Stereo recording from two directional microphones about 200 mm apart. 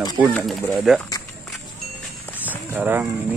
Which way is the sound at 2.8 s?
10° right (ahead or behind).